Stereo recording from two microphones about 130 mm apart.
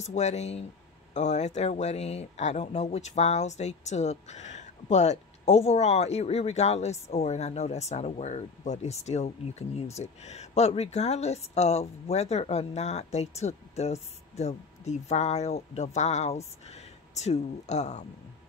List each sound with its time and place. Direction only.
0.0 s speech: 60° left (ahead or behind)